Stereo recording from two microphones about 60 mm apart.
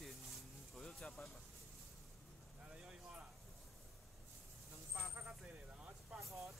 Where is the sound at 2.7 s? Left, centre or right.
Centre.